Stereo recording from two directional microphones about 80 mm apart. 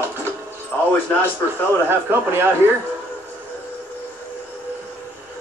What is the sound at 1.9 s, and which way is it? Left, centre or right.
Speech, right.